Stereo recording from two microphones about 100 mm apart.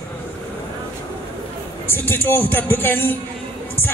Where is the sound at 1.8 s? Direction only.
25° left (ahead or behind).